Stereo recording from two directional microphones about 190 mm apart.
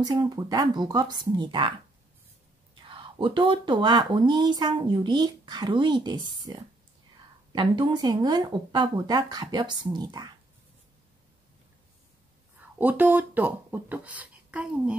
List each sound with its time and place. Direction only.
0.0 s speech: 20° right (ahead or behind)
12.7 s speech: 10° right (ahead or behind)